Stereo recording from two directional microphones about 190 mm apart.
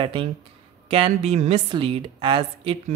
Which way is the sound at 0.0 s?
25° right (ahead or behind).